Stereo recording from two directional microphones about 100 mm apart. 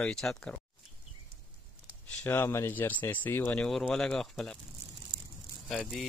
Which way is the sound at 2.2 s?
20° left (ahead or behind).